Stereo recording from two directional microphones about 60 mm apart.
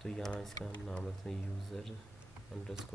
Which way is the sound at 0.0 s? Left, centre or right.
Centre.